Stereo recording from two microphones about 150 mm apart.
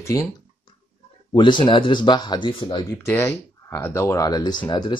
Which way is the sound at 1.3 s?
35° left (ahead or behind).